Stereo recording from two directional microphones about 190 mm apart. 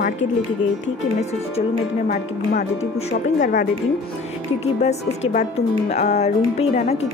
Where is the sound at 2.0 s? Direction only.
35° left (ahead or behind).